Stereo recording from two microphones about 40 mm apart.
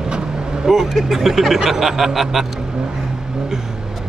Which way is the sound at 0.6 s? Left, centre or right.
Centre.